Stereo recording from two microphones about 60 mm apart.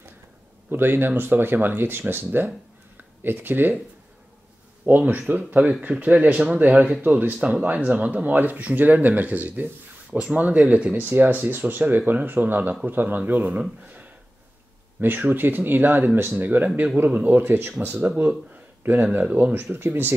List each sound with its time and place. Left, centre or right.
0.7 s speech: right
4.8 s speech: right
7.3 s speech: centre
11.1 s speech: right
19.1 s speech: right